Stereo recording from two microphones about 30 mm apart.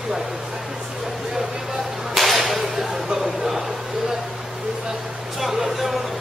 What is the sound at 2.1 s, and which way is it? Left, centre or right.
Whip, centre.